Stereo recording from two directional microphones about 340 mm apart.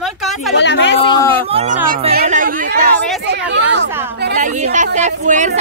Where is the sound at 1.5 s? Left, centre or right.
Centre.